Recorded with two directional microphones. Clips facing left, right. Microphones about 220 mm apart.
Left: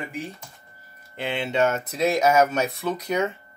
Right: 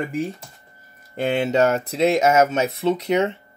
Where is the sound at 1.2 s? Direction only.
45° right (ahead or behind); by 3.4 s 25° right (ahead or behind).